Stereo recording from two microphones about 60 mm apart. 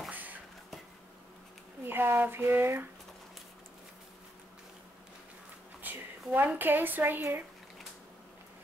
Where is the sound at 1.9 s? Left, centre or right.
Right.